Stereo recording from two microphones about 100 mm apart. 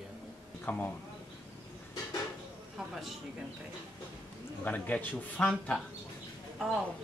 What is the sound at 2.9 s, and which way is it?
Speech, centre (ahead or behind).